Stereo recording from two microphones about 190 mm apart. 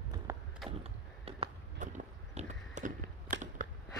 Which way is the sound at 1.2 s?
30° right (ahead or behind).